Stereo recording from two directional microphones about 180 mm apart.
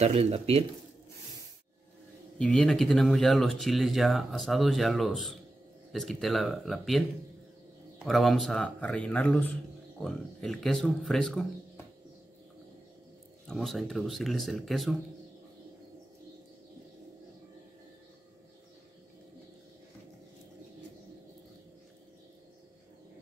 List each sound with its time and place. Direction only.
0.0 s speech: 35° right (ahead or behind)
2.3 s speech: 5° left (ahead or behind)
13.5 s speech: centre (ahead or behind)